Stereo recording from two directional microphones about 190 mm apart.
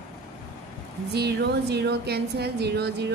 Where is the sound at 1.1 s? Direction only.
60° right (ahead or behind).